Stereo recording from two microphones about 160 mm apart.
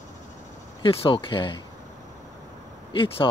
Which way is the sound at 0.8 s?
35° left (ahead or behind).